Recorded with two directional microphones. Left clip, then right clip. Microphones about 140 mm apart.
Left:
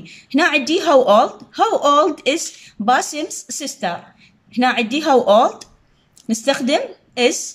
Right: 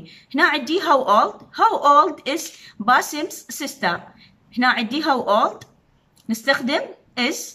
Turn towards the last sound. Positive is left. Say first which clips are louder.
# left 6 dB
turn(degrees=10)  # may be behind; listen again after turning